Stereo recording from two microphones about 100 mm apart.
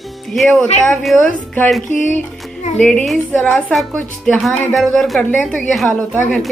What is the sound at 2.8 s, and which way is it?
A woman's voice, 5° left (ahead or behind).